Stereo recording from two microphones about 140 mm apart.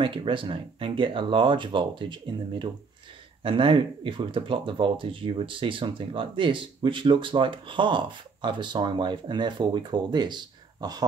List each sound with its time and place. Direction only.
0.0 s speech: 40° right (ahead or behind)
3.4 s speech: 40° right (ahead or behind)